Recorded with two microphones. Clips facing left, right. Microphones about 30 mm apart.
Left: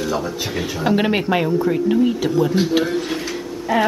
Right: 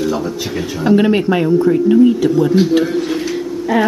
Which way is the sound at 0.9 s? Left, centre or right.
Centre.